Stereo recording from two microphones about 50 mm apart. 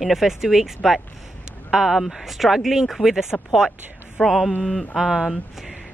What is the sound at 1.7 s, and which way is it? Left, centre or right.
Speech, centre.